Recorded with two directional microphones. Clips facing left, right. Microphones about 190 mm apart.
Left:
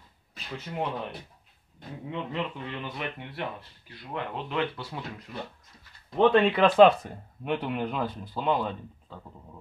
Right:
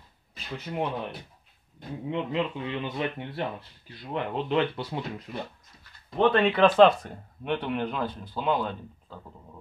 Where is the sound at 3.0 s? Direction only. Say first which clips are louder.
Right 4 dB; 30° right (ahead or behind).